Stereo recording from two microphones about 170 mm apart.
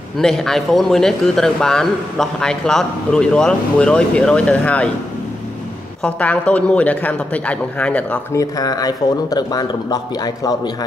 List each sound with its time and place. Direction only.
0.2 s speech: centre (ahead or behind)
6.0 s a man's voice: 10° left (ahead or behind)
8.4 s speech: 20° left (ahead or behind)